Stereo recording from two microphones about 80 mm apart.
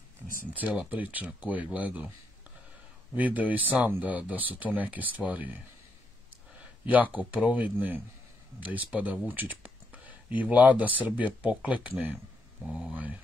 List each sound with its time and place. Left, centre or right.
0.5 s speech: centre
3.2 s speech: centre
6.6 s a sound: centre
7.2 s speech: centre